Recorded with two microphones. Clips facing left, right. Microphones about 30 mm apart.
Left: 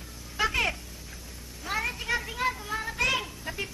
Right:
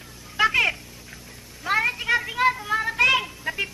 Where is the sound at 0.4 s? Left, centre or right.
Right.